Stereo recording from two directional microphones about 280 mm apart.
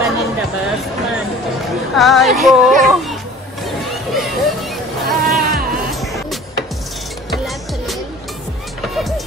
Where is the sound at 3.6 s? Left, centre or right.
Centre.